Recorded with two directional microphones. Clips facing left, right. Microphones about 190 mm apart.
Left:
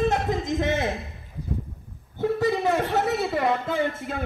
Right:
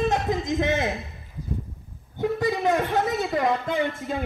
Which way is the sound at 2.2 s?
15° right (ahead or behind).